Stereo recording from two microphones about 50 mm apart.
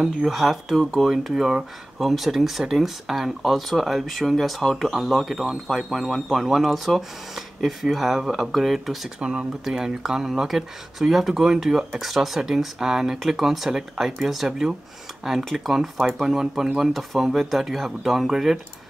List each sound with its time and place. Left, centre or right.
0.0 s speech: centre
9.2 s speech: right
9.7 s speech: centre